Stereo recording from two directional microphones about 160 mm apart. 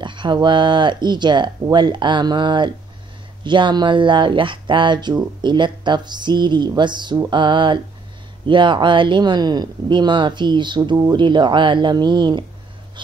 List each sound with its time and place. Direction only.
0.0 s speech: 30° right (ahead or behind)